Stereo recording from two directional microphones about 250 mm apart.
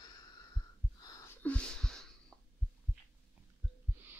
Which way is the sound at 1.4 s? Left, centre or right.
Centre.